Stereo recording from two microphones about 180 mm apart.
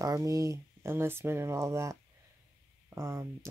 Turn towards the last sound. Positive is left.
turn(degrees=-15)  # may be behind; listen again after turning